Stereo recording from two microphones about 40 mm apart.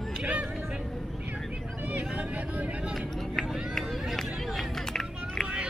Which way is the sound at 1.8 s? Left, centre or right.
Right.